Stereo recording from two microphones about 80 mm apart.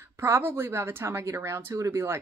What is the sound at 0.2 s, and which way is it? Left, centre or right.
Speech, right.